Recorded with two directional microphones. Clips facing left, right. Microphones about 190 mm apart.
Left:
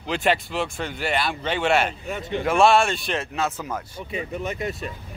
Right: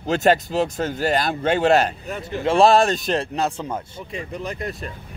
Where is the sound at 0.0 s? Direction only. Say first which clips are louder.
Right 5 dB; 45° right (ahead or behind).